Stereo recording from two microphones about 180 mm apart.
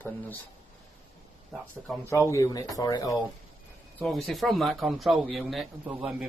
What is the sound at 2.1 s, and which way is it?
Speech, 15° left (ahead or behind).